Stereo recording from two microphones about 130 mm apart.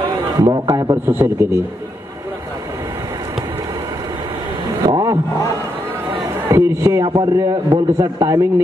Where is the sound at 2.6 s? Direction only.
25° right (ahead or behind).